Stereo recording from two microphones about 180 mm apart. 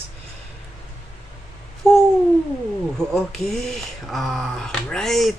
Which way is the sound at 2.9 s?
5° left (ahead or behind).